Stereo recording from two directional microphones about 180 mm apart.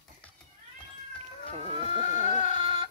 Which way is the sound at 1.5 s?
35° right (ahead or behind).